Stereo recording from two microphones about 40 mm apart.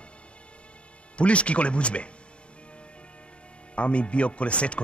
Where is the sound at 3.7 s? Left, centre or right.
Left.